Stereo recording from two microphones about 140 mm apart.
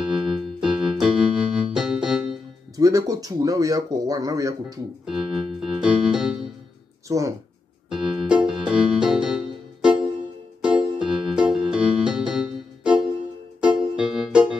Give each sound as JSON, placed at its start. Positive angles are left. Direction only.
{"t": 0.0, "sound": "keyboard", "side_deg": -5}
{"t": 2.8, "sound": "speech", "side_deg": -25}
{"t": 5.0, "sound": "keyboard", "side_deg": -5}
{"t": 7.1, "sound": "speech", "side_deg": -25}
{"t": 7.9, "sound": "keyboard", "side_deg": -5}
{"t": 8.5, "sound": "music", "side_deg": -5}
{"t": 11.1, "sound": "music", "side_deg": -5}